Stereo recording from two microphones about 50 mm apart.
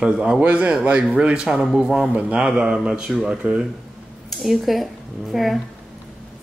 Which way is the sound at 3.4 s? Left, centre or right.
Right.